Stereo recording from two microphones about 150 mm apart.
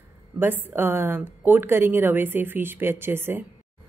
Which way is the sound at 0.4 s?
15° right (ahead or behind).